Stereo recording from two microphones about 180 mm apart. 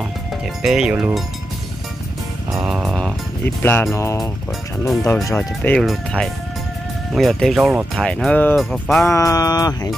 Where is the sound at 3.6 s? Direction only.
10° left (ahead or behind).